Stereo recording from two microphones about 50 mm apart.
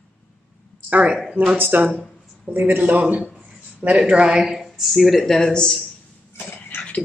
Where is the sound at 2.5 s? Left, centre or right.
Right.